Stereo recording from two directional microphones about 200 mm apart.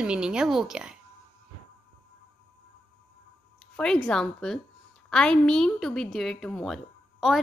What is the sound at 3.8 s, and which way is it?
Speech, 5° left (ahead or behind).